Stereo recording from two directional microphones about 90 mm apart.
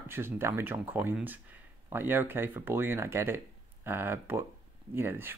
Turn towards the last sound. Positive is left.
turn(degrees=-25)  # may be behind; listen again after turning